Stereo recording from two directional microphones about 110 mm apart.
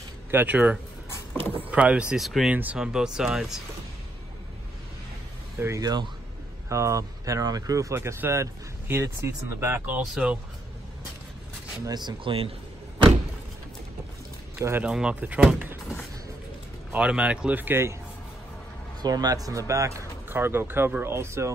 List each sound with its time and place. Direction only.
0.3 s speech: 15° right (ahead or behind); by 2.5 s centre (ahead or behind)
2.5 s speech: 15° right (ahead or behind)
5.6 s speech: 30° right (ahead or behind); by 10.4 s 10° right (ahead or behind)
11.8 s speech: 35° right (ahead or behind)
14.6 s speech: 20° right (ahead or behind)
14.9 s speech: 10° right (ahead or behind)
16.9 s speech: 10° right (ahead or behind)
19.0 s speech: 35° right (ahead or behind)